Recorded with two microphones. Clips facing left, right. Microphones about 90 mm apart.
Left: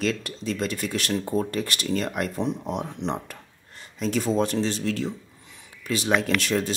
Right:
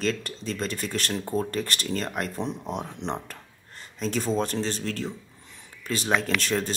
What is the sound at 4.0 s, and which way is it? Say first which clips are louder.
Speech: left 3 dB; 35° right (ahead or behind).